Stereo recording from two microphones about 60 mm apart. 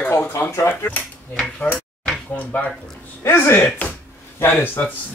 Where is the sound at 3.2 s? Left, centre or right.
Left.